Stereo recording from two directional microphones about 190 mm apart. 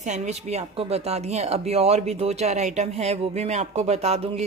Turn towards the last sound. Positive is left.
turn(degrees=-35)  # may be behind; listen again after turning